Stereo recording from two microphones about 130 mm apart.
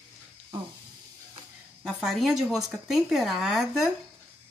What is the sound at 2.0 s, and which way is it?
Speech, centre (ahead or behind).